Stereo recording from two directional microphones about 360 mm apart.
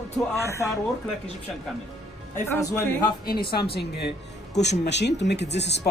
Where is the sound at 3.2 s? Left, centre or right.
Left.